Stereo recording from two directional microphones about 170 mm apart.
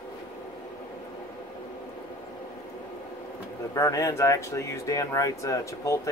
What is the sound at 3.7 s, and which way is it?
Speech, 20° left (ahead or behind).